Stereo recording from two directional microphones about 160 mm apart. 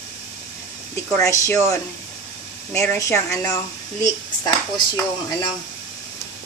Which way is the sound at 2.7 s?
15° left (ahead or behind).